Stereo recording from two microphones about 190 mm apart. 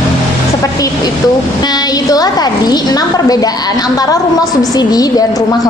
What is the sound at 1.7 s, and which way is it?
A woman's voice, 20° left (ahead or behind).